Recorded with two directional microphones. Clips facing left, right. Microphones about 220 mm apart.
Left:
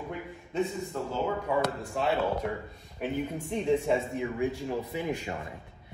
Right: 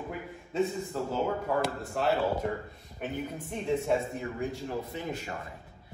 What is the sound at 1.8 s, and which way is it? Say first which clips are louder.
Speech: even; centre (ahead or behind).